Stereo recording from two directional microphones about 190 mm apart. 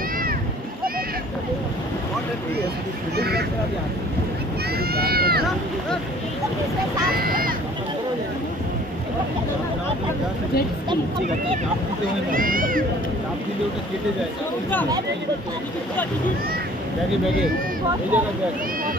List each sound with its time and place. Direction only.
3.2 s speech: 55° right (ahead or behind)
4.7 s speech: 55° right (ahead or behind)
7.1 s speech: 50° right (ahead or behind)
12.3 s speech: 45° right (ahead or behind)
18.1 s speech: 10° right (ahead or behind)